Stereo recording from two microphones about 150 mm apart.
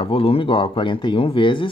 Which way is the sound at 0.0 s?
40° left (ahead or behind).